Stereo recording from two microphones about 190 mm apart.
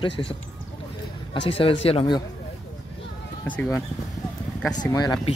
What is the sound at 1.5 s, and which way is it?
Speech, 30° left (ahead or behind).